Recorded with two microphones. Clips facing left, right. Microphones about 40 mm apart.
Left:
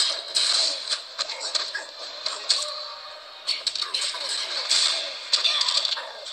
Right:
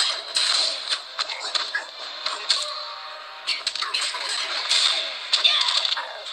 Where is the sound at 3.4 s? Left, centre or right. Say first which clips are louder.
Right 2 dB; right.